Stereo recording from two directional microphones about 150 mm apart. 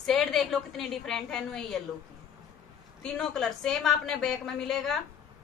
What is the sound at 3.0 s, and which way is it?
A woman's voice, 5° left (ahead or behind).